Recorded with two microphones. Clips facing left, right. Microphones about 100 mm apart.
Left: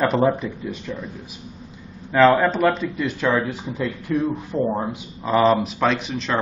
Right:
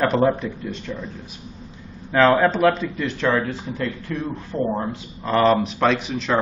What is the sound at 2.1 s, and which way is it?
Speech, centre (ahead or behind).